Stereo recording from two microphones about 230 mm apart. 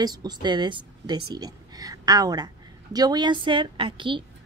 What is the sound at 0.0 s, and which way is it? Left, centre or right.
A woman's voice, centre.